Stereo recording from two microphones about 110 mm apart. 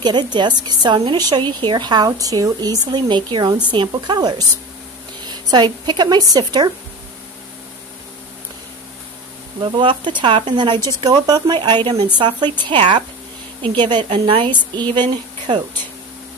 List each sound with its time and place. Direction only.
0.0 s a woman's voice: 40° right (ahead or behind)
9.6 s a woman's voice: 45° right (ahead or behind)